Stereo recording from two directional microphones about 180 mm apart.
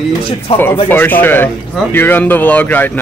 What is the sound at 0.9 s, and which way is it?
Speech, 10° left (ahead or behind).